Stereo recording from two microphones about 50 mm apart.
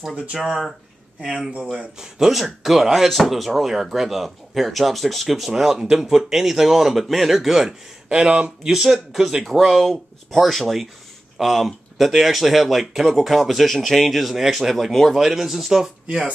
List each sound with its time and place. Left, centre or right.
0.0 s speech: centre
1.6 s speech: right
2.0 s speech: centre
16.1 s speech: right